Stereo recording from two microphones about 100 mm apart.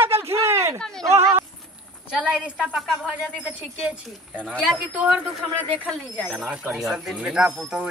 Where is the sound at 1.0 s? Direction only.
25° right (ahead or behind).